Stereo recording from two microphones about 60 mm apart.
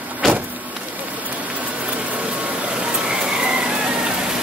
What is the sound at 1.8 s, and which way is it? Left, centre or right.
Vehicle, right.